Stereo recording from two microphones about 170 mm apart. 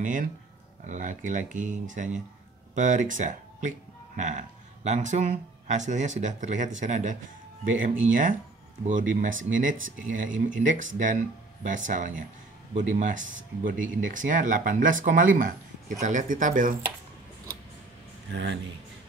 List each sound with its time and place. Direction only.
0.0 s speech: 50° right (ahead or behind)
18.3 s speech: 90° right